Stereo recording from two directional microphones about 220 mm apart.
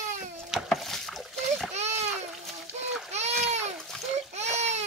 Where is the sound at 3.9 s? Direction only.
5° left (ahead or behind).